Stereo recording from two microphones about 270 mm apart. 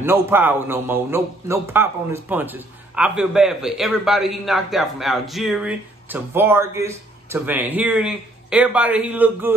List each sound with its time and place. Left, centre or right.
0.0 s a man's voice: centre